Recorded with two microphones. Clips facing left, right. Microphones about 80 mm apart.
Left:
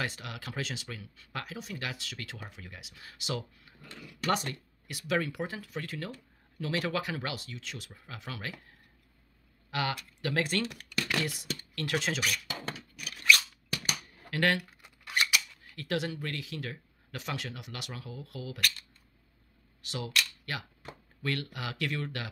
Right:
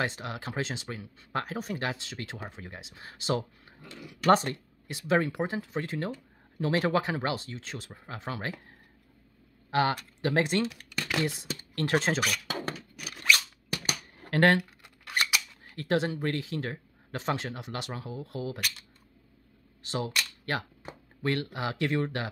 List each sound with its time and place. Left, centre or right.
0.0 s speech: right
3.8 s speech: centre
4.3 s speech: right
10.8 s a sound: centre
11.2 s speech: right
13.1 s a sound: right
13.8 s a sound: right
15.1 s speech: right
19.8 s cap gun: right
21.2 s speech: right